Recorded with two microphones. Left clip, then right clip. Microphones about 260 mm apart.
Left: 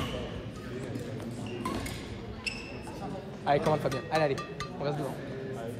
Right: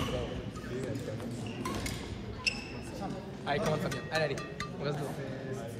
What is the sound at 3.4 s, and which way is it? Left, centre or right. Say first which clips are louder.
Speech: left 5 dB; left.